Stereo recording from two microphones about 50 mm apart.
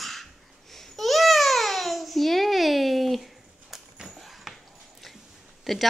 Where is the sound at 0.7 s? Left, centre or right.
Centre.